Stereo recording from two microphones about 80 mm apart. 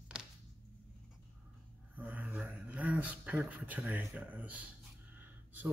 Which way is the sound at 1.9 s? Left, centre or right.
Centre.